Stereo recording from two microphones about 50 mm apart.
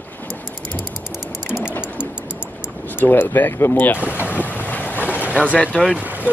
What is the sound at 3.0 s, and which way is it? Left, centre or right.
Speech, left.